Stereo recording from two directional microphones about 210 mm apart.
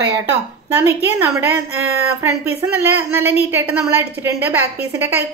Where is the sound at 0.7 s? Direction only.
10° right (ahead or behind).